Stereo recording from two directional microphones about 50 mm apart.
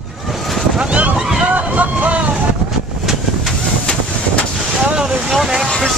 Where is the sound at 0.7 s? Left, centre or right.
Right.